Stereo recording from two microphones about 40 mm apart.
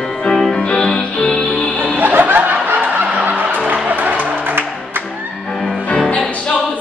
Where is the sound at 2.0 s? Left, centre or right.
Right.